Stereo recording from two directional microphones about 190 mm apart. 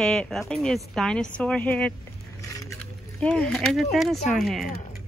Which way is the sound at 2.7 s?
5° left (ahead or behind).